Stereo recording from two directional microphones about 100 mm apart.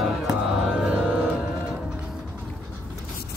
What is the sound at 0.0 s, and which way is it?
Music, 5° right (ahead or behind).